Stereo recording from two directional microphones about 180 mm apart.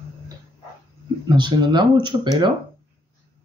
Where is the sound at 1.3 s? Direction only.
25° right (ahead or behind).